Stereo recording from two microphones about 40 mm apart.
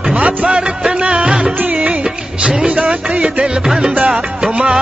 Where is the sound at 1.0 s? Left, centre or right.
Right.